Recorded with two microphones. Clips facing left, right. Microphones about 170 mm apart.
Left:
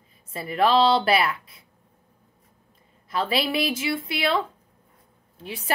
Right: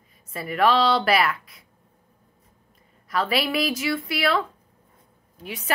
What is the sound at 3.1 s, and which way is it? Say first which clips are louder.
A woman's voice: right 1 dB; 30° left (ahead or behind).